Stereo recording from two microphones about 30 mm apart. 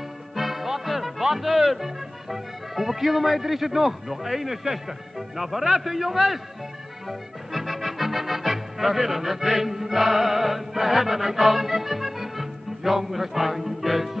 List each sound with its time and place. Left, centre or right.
0.4 s music: centre
1.2 s a man's voice: centre
7.1 s music: centre